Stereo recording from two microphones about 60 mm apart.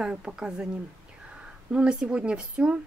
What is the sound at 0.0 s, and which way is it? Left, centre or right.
Speech, centre.